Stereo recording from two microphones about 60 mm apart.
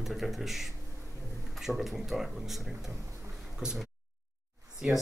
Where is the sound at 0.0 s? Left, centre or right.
Centre.